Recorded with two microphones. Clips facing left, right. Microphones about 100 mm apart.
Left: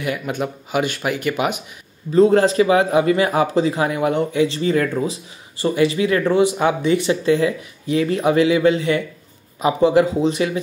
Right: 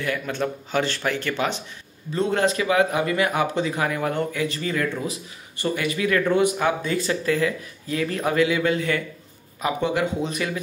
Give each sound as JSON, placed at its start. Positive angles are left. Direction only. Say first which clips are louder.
{"t": 0.0, "sound": "speech", "louder": "left 2 dB", "side_deg": 15}
{"t": 2.1, "sound": "speech", "louder": "left 9 dB", "side_deg": 35}